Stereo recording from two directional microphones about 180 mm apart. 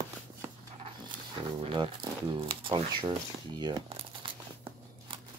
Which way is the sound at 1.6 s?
30° right (ahead or behind).